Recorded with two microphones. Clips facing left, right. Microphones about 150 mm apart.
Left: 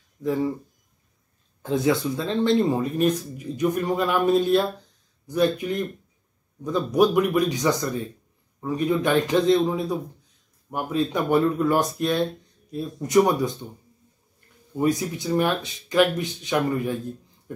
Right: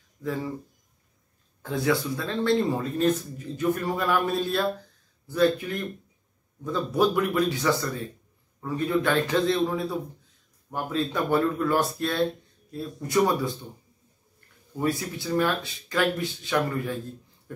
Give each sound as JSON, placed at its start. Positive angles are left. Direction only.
{"t": 1.6, "sound": "speech", "side_deg": 20}
{"t": 14.8, "sound": "speech", "side_deg": 20}
{"t": 17.5, "sound": "a sound", "side_deg": 20}